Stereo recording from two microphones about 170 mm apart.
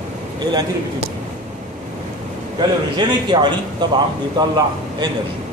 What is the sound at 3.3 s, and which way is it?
A man's voice, 25° right (ahead or behind).